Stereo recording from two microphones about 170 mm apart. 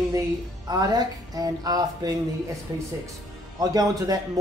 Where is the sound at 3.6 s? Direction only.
20° right (ahead or behind).